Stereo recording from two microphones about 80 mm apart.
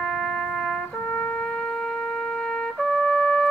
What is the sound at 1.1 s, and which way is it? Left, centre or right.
Trumpet, centre.